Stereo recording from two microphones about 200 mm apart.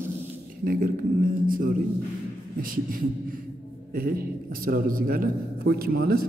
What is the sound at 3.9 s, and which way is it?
A man's voice, 45° right (ahead or behind).